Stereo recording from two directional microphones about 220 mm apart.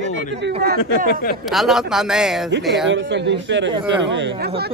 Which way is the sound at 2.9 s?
55° right (ahead or behind).